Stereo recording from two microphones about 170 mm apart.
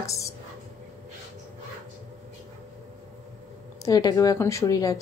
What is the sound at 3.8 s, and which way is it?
A woman's voice, 20° left (ahead or behind).